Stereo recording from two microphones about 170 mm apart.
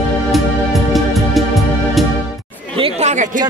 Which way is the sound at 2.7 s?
35° right (ahead or behind).